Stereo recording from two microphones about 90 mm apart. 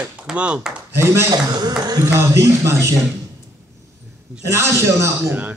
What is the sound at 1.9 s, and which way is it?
A man's voice, 35° right (ahead or behind).